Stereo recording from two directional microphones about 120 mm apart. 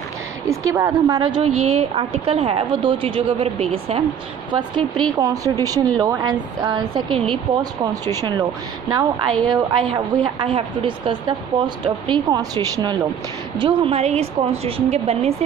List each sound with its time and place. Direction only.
0.5 s a woman's voice: 25° right (ahead or behind)
1.4 s a woman's voice: 55° right (ahead or behind)
4.5 s a woman's voice: 40° right (ahead or behind)
7.8 s a woman's voice: 30° right (ahead or behind)
13.6 s a woman's voice: 45° right (ahead or behind)
13.9 s a woman's voice: 60° right (ahead or behind)